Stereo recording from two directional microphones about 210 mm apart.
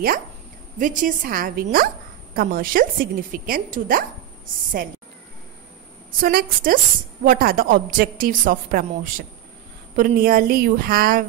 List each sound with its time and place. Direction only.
0.7 s a woman's voice: 40° right (ahead or behind)
6.2 s a woman's voice: 40° right (ahead or behind)